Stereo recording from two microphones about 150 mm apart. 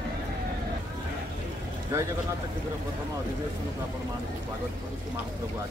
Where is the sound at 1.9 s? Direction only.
20° right (ahead or behind).